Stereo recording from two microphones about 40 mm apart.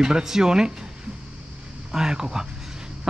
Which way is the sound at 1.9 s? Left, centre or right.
Centre.